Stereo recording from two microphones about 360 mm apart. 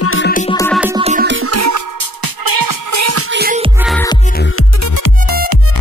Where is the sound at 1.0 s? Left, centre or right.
Right.